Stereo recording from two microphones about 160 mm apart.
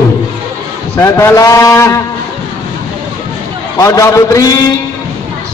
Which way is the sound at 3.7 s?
20° left (ahead or behind).